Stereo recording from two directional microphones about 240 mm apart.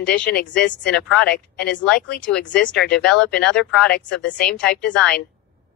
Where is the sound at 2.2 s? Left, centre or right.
Centre.